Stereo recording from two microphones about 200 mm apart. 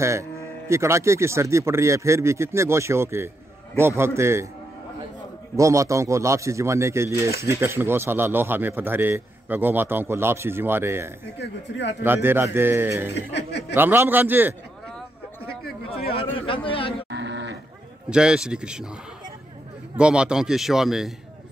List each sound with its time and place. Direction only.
0.0 s a man's voice: 15° right (ahead or behind)
5.6 s a man's voice: 15° right (ahead or behind)
7.2 s speech: 50° left (ahead or behind)
7.6 s a man's voice: 10° right (ahead or behind)
11.3 s speech: 60° left (ahead or behind)
12.0 s a man's voice: 10° right (ahead or behind)
13.1 s speech: 60° left (ahead or behind)
13.7 s a man's voice: 10° right (ahead or behind)
15.9 s speech: 30° left (ahead or behind)
17.1 s livestock: 60° right (ahead or behind)
18.1 s a man's voice: 5° right (ahead or behind)
20.0 s a man's voice: 5° right (ahead or behind)